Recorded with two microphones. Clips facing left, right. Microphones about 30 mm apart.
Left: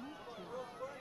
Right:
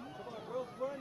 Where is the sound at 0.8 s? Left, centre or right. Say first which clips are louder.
Right 10 dB; centre.